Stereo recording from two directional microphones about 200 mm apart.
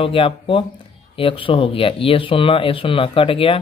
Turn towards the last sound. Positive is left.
turn(degrees=25)  # may be behind; listen again after turning